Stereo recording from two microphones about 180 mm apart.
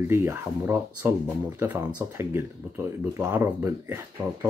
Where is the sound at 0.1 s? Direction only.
15° right (ahead or behind).